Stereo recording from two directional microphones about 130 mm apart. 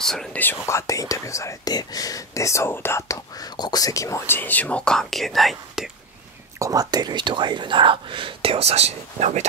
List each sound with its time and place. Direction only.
0.0 s speech: 5° left (ahead or behind)
0.4 s speech: 20° left (ahead or behind); by 5.9 s centre (ahead or behind)
6.6 s speech: 30° right (ahead or behind); by 9.5 s 60° right (ahead or behind)